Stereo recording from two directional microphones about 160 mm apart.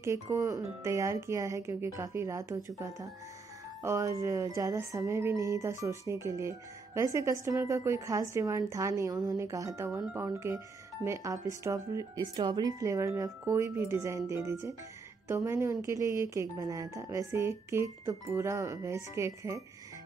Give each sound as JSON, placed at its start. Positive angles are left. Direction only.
{"t": 0.0, "sound": "speech", "side_deg": -20}